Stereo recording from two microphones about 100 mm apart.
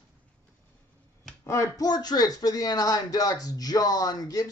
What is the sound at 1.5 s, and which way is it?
Speech, 35° left (ahead or behind).